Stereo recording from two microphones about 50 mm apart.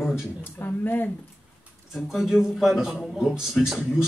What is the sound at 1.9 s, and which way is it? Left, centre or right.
A man's voice, centre.